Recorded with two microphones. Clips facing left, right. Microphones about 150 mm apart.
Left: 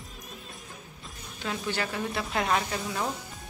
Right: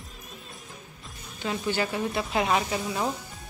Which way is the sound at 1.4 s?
5° right (ahead or behind).